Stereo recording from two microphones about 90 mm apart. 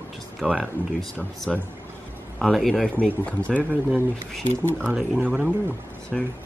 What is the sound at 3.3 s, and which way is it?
Speech, 15° left (ahead or behind).